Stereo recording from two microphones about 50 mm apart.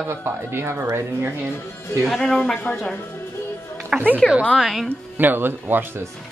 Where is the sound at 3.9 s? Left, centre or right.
Right.